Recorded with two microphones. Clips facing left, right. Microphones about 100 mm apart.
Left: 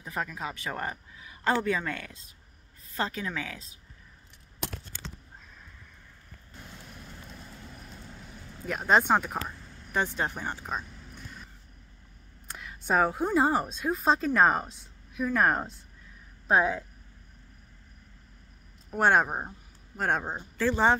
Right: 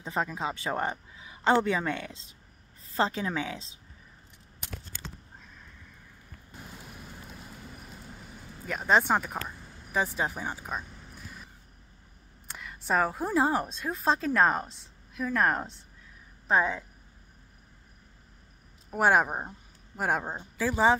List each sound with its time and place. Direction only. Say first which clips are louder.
0.0 s speech: right 3 dB; 25° right (ahead or behind)
6.5 s vehicle: right 2 dB; 5° right (ahead or behind)
9.9 s speech: even; centre (ahead or behind)
12.4 s a woman's voice: left 1 dB; centre (ahead or behind)
18.9 s a man's voice: even; 5° right (ahead or behind)